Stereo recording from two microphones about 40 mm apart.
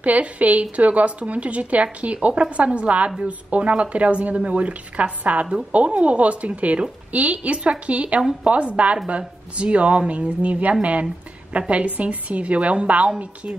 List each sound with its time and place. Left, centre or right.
0.0 s speech: right